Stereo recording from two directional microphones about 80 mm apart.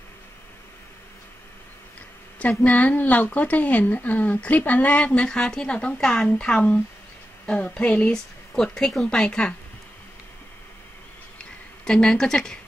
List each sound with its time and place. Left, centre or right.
2.6 s speech: centre
11.8 s speech: centre